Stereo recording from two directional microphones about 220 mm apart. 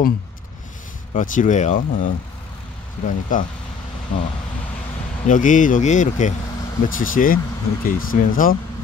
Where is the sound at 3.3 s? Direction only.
35° left (ahead or behind).